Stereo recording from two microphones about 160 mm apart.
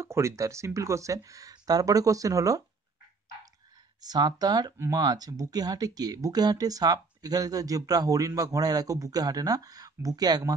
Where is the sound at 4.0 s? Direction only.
25° right (ahead or behind).